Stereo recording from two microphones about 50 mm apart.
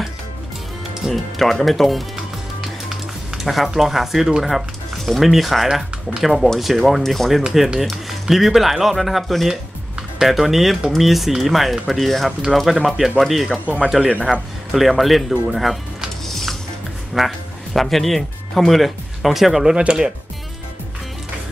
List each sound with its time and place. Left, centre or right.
1.0 s speech: centre
3.3 s speech: centre
9.5 s music: centre
10.2 s speech: centre
14.7 s speech: centre
17.1 s speech: centre
19.7 s speech: centre